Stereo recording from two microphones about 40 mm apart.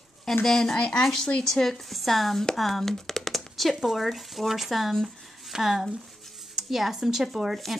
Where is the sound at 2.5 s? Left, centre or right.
Centre.